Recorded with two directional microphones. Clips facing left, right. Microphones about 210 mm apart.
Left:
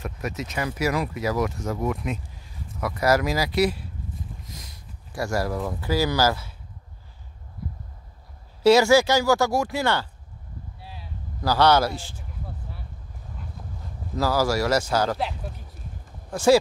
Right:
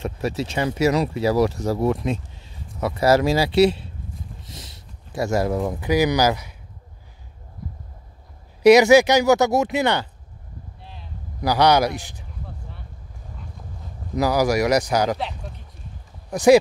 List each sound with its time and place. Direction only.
0.0 s speech: 30° right (ahead or behind)
4.5 s boat: 25° right (ahead or behind)
5.1 s speech: 20° right (ahead or behind)
8.6 s speech: 15° right (ahead or behind)
10.8 s a sound: 5° left (ahead or behind)
11.4 s speech: 15° right (ahead or behind)
14.1 s speech: 15° right (ahead or behind)
15.1 s speech: centre (ahead or behind)
16.3 s speech: 15° right (ahead or behind)